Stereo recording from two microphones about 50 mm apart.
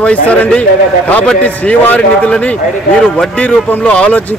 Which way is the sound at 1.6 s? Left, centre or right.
Left.